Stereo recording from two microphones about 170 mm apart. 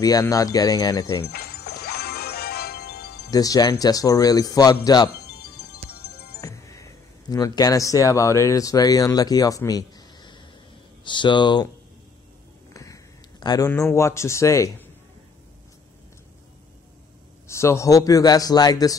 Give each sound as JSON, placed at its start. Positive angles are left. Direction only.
{"t": 0.0, "sound": "a man's voice", "side_deg": 20}
{"t": 1.2, "sound": "music", "side_deg": 65}
{"t": 3.3, "sound": "a man's voice", "side_deg": 20}
{"t": 6.4, "sound": "a man's voice", "side_deg": 20}
{"t": 12.7, "sound": "speech", "side_deg": 20}
{"t": 17.5, "sound": "a man's voice", "side_deg": 15}